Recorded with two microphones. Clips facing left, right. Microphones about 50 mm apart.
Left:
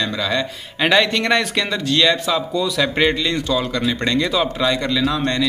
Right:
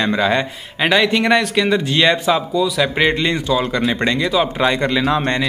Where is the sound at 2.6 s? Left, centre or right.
Centre.